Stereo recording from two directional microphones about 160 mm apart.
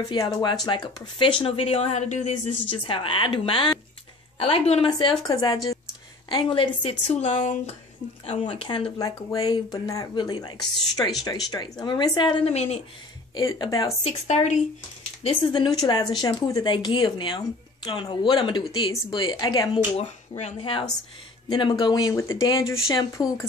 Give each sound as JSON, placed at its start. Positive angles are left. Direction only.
{"t": 0.1, "sound": "speech", "side_deg": 25}
{"t": 2.9, "sound": "speech", "side_deg": 35}
{"t": 4.9, "sound": "speech", "side_deg": 25}
{"t": 13.3, "sound": "speech", "side_deg": 25}
{"t": 14.0, "sound": "a woman's voice", "side_deg": 45}
{"t": 15.2, "sound": "speech", "side_deg": 30}
{"t": 20.0, "sound": "speech", "side_deg": 40}